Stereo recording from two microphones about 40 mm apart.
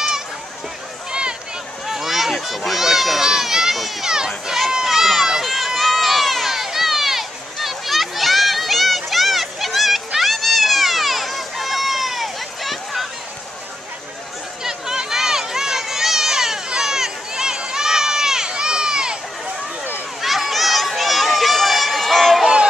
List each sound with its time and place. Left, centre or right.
1.9 s a sound: centre
2.8 s run: centre
4.0 s run: centre
5.8 s a sound: centre
14.6 s run: centre
18.5 s crowd: centre
20.2 s run: centre